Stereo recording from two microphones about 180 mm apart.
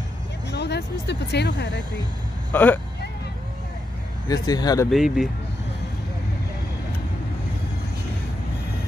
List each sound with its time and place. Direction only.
0.5 s speech: 70° left (ahead or behind)
2.5 s speech: 10° left (ahead or behind)
4.3 s speech: 20° left (ahead or behind)
4.9 s speech: centre (ahead or behind)